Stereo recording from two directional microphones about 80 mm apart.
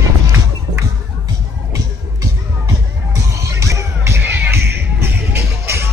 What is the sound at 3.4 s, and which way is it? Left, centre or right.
Music, right.